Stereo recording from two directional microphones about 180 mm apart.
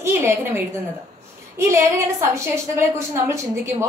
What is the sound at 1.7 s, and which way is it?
A woman's voice, 15° right (ahead or behind).